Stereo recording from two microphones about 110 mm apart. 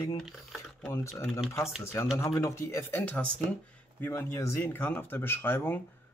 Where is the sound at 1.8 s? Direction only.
25° left (ahead or behind).